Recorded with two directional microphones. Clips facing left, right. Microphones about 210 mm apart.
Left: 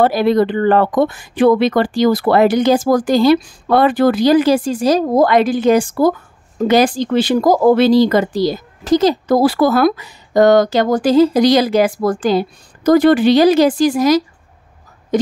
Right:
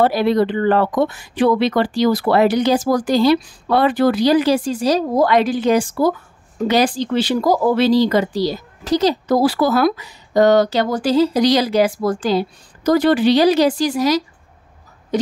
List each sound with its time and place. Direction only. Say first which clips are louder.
0.0 s speech: left 2 dB; 50° left (ahead or behind)